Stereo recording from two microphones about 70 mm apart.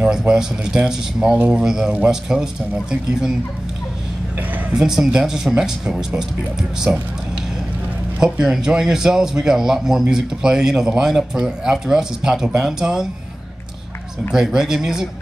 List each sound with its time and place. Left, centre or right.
0.0 s a sound: right
0.3 s a man's voice: centre
4.7 s a man's voice: centre
6.9 s speech: right
8.2 s a man's voice: centre
14.3 s a man's voice: centre